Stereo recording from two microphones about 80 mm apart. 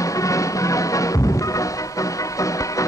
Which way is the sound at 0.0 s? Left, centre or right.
Left.